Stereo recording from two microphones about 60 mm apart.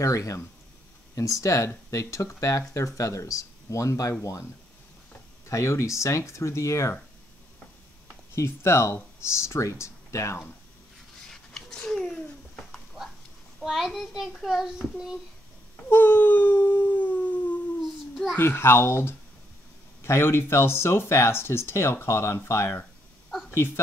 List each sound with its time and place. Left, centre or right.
0.0 s speech: left
5.5 s speech: left
8.4 s speech: left
11.2 s a sound: centre
13.6 s a child's voice: centre
15.9 s dog: left
18.3 s speech: left